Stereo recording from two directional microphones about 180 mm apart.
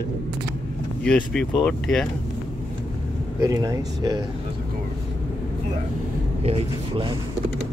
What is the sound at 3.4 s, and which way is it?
Speech, 20° right (ahead or behind).